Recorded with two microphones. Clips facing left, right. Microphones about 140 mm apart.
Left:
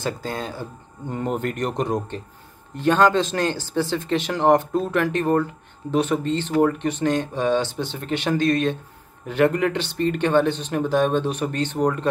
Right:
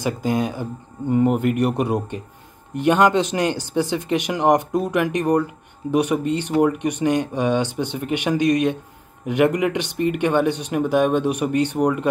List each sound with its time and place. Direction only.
0.0 s speech: 15° right (ahead or behind)